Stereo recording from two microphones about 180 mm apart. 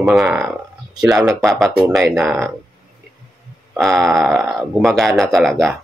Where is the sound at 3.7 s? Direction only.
Centre (ahead or behind).